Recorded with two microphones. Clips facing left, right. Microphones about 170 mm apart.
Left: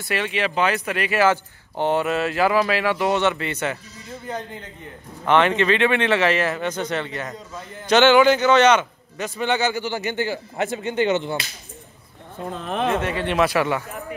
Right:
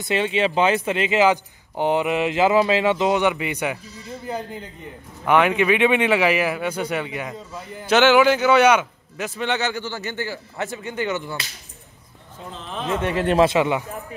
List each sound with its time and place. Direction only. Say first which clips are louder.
0.0 s a man's voice: right 3 dB; 25° right (ahead or behind); by 9.8 s centre (ahead or behind)
9.8 s a man's voice: left 4 dB; 15° left (ahead or behind)
12.4 s speech: left 6 dB; 60° left (ahead or behind)
13.4 s speech: right 2 dB; 20° right (ahead or behind)